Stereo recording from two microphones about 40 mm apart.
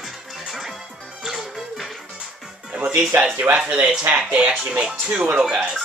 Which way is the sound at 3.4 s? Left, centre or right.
Right.